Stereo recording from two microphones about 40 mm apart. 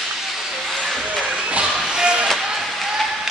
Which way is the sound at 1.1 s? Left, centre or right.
Right.